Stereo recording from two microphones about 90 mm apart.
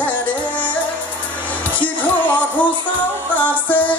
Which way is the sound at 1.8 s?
15° left (ahead or behind).